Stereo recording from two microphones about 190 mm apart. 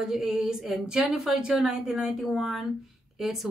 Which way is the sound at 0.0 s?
5° right (ahead or behind).